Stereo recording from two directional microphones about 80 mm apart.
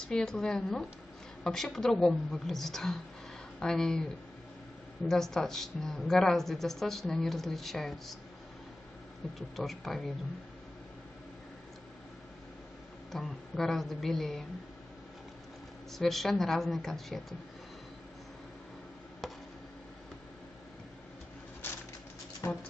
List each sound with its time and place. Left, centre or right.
0.0 s a woman's voice: centre
9.2 s speech: centre
13.1 s speech: centre
15.9 s speech: centre
19.2 s chop: centre
22.4 s speech: left